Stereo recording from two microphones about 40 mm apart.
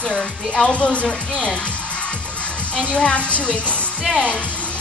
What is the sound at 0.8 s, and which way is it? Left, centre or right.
Speech, left.